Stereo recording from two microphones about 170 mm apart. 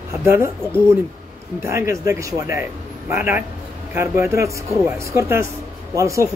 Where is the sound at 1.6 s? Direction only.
15° right (ahead or behind).